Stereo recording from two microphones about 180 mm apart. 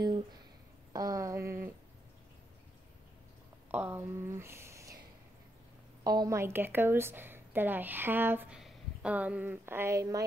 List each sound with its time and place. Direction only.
0.9 s a woman's voice: 20° right (ahead or behind)
3.7 s speech: 10° right (ahead or behind)
6.0 s a woman's voice: 20° right (ahead or behind)